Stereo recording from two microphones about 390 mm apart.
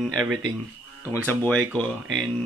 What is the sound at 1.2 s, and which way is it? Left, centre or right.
Mantra, centre.